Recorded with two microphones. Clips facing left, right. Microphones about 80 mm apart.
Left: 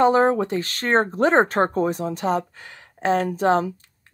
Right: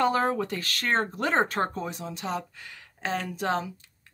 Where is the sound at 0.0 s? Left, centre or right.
Left.